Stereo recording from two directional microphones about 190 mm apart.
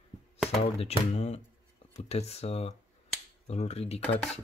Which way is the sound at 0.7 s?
35° left (ahead or behind).